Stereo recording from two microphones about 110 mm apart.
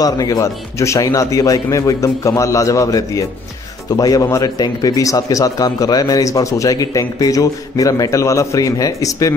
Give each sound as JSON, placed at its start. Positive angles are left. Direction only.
{"t": 0.0, "sound": "a man's voice", "side_deg": 35}